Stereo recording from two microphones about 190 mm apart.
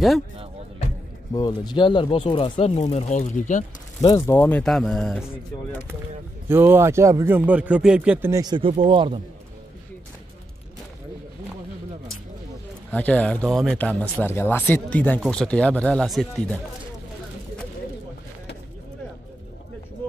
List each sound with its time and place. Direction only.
1.3 s speech: 20° left (ahead or behind); by 3.6 s 40° left (ahead or behind)
4.0 s speech: 15° left (ahead or behind)
6.5 s a man's voice: 10° right (ahead or behind)
8.3 s speech: 20° right (ahead or behind)
12.9 s speech: 5° left (ahead or behind)